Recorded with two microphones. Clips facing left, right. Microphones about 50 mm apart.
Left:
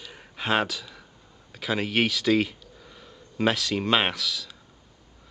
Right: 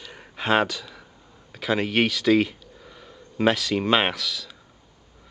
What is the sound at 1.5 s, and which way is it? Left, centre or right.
Speech, centre.